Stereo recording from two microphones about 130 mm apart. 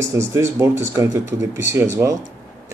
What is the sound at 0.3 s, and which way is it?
Speech, 20° right (ahead or behind).